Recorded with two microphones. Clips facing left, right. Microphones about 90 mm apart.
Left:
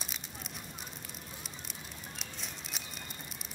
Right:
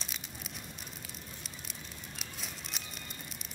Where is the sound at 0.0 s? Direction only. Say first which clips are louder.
Left 1 dB; centre (ahead or behind).